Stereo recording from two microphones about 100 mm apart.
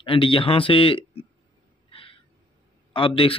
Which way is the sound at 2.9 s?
60° left (ahead or behind).